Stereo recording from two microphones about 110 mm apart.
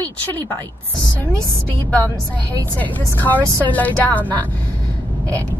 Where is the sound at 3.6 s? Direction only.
15° left (ahead or behind).